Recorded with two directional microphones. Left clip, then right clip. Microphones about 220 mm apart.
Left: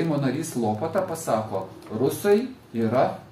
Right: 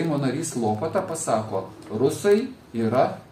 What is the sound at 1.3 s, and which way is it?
A man's voice, 10° right (ahead or behind).